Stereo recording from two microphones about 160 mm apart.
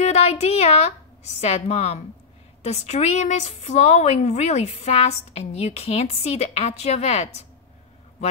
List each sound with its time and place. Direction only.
0.0 s a woman's voice: 40° left (ahead or behind)